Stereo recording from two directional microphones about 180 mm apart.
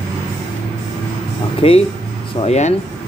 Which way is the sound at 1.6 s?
35° left (ahead or behind).